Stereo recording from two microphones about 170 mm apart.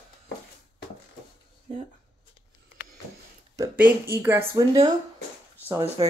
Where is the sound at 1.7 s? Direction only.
35° right (ahead or behind).